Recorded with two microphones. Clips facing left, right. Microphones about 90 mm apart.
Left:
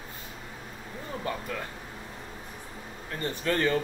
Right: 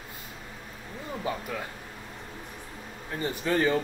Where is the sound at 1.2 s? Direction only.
10° right (ahead or behind).